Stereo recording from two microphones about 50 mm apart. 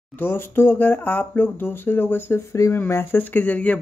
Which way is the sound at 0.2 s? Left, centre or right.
Left.